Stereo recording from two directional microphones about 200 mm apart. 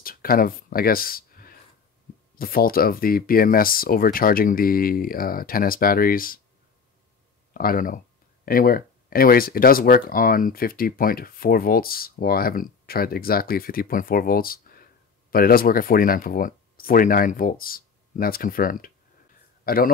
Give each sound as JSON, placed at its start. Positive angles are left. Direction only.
{"t": 0.0, "sound": "a sound", "side_deg": 45}
{"t": 2.3, "sound": "speech", "side_deg": 45}
{"t": 7.5, "sound": "a man's voice", "side_deg": 45}